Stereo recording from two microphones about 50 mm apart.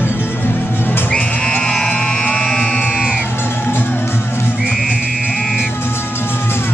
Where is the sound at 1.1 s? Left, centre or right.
Centre.